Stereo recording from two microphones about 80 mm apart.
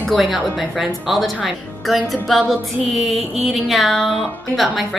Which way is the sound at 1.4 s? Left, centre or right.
Centre.